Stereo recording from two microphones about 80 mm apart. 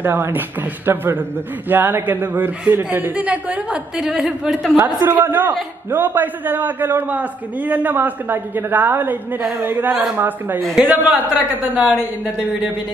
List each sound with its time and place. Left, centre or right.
0.0 s a man's voice: right; by 4.7 s centre
5.0 s a man's voice: right
10.6 s a man's voice: centre
10.9 s a man's voice: centre